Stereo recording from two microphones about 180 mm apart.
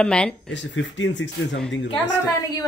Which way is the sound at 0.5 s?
90° left.